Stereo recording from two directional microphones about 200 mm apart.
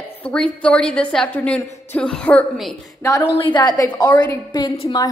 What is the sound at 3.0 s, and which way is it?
A woman's voice, 20° left (ahead or behind).